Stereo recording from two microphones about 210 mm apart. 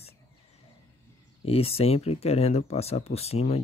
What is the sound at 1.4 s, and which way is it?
Speech, 30° left (ahead or behind).